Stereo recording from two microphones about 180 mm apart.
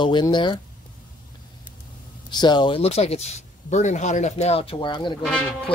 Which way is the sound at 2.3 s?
25° left (ahead or behind).